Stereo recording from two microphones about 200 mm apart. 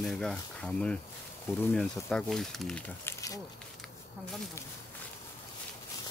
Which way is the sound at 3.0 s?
15° left (ahead or behind).